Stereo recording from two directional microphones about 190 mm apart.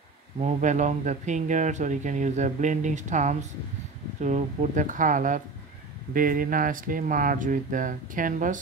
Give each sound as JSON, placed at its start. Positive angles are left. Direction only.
{"t": 0.4, "sound": "speech", "side_deg": -40}